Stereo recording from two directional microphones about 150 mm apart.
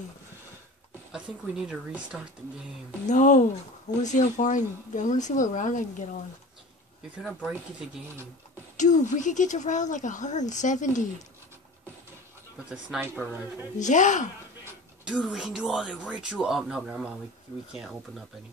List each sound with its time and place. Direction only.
1.1 s speech: 5° right (ahead or behind)
3.1 s speech: 55° left (ahead or behind)
7.2 s speech: centre (ahead or behind)
8.7 s speech: 55° left (ahead or behind)
13.7 s speech: 55° left (ahead or behind)
15.0 s speech: 5° right (ahead or behind)